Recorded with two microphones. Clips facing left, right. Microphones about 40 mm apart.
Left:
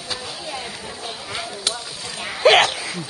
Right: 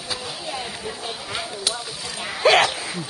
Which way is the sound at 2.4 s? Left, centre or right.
Left.